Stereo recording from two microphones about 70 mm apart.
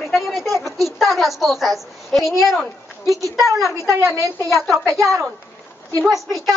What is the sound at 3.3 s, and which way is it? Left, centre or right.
Speech, right.